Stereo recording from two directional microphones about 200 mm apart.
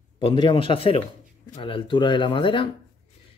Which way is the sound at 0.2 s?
25° left (ahead or behind).